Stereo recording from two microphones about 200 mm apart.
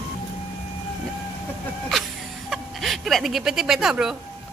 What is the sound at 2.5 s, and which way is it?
Speech, centre (ahead or behind).